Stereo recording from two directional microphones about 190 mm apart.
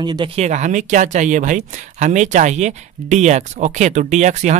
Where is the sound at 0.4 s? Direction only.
40° right (ahead or behind).